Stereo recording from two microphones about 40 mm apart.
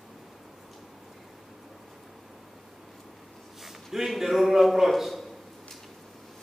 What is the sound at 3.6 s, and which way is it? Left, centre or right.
A man's voice, centre.